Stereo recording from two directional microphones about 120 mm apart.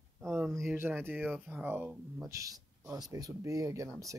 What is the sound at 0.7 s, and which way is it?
Speech, 15° right (ahead or behind).